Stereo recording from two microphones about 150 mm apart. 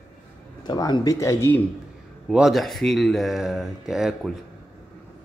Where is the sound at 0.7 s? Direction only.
30° left (ahead or behind).